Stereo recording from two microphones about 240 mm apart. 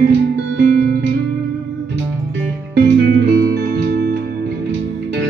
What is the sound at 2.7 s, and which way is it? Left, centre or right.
Music, right.